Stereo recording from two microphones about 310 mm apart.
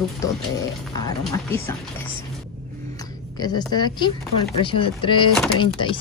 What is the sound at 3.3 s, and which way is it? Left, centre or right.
Speech, centre.